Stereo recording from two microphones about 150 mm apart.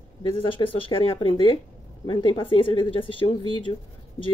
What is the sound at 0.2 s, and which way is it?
Speech, 35° left (ahead or behind).